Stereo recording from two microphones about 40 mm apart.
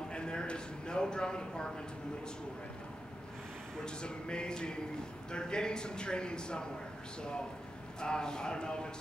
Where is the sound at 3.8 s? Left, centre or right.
Left.